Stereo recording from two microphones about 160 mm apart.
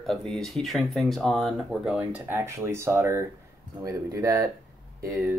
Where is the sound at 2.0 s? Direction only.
10° right (ahead or behind).